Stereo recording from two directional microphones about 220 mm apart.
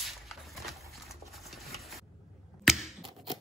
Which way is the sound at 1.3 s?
Centre (ahead or behind).